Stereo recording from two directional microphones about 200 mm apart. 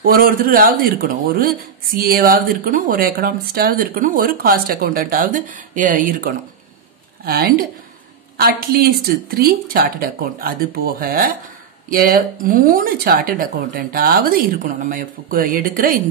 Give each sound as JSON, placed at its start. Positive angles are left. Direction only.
{"t": 0.0, "sound": "speech", "side_deg": -45}